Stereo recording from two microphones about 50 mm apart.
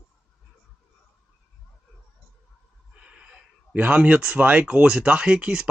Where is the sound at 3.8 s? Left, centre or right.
Right.